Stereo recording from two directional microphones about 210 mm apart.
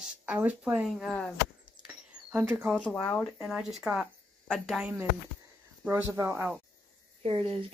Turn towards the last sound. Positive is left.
turn(degrees=-25)  # may be behind; listen again after turning